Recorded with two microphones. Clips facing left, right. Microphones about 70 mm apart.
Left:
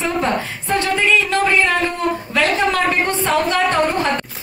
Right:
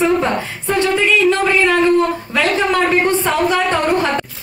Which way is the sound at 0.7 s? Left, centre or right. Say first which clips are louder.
Right 2 dB; centre.